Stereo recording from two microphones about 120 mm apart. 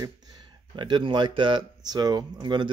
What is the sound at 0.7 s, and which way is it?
Speech, 40° right (ahead or behind).